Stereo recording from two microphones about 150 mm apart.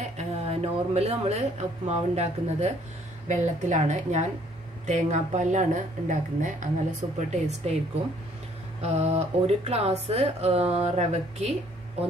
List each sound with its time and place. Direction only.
0.2 s speech: 45° right (ahead or behind)
8.8 s speech: 45° right (ahead or behind)